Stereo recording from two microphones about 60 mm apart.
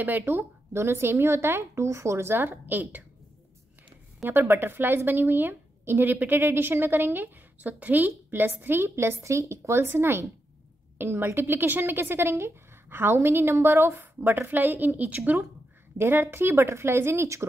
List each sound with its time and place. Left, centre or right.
0.0 s a woman's voice: right
0.7 s a woman's voice: right
4.2 s a woman's voice: right
16.0 s a woman's voice: right